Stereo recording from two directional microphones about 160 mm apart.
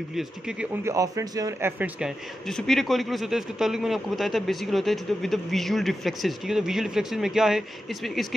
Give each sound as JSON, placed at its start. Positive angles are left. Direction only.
{"t": 0.1, "sound": "speech", "side_deg": -5}
{"t": 0.8, "sound": "a man's voice", "side_deg": -20}
{"t": 1.8, "sound": "speech", "side_deg": -5}